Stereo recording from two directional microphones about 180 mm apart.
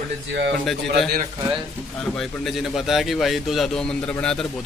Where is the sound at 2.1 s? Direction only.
Centre (ahead or behind).